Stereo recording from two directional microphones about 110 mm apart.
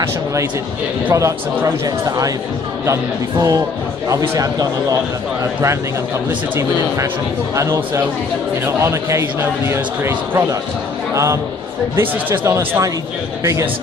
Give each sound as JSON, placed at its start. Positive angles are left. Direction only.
{"t": 0.0, "sound": "a man's voice", "side_deg": -25}
{"t": 7.5, "sound": "a man's voice", "side_deg": -25}
{"t": 11.9, "sound": "a man's voice", "side_deg": -25}